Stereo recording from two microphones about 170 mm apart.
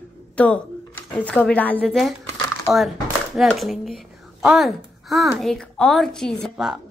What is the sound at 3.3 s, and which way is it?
Speech, centre (ahead or behind).